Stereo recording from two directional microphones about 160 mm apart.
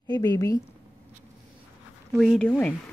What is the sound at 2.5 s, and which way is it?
Speech, 10° left (ahead or behind).